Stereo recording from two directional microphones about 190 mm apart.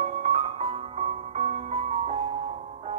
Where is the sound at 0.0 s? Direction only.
35° right (ahead or behind).